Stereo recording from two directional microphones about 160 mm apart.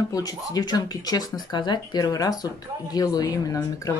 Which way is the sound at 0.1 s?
20° left (ahead or behind).